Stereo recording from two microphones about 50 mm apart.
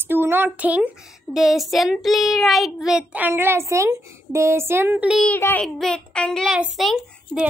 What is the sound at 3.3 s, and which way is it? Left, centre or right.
A woman's voice, right.